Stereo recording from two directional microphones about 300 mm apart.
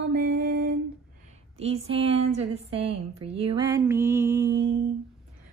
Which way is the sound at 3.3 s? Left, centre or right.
Centre.